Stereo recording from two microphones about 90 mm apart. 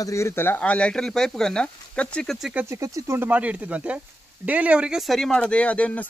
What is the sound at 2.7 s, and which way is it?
Speech, 35° right (ahead or behind).